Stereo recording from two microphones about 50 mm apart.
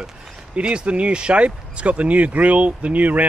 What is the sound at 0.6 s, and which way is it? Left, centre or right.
Speech, right.